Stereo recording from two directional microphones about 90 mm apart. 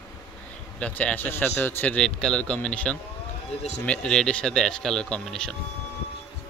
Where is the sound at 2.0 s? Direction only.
5° left (ahead or behind).